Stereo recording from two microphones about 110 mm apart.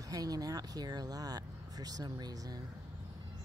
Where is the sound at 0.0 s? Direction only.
35° right (ahead or behind).